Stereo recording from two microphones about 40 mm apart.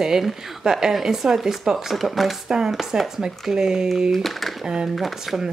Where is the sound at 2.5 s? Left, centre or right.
Centre.